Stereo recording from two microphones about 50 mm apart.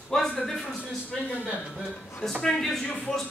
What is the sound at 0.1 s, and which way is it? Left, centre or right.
Speech, centre.